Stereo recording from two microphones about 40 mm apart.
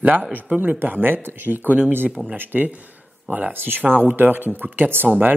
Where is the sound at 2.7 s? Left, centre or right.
Right.